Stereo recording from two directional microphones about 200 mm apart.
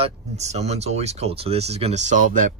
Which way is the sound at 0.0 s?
35° right (ahead or behind).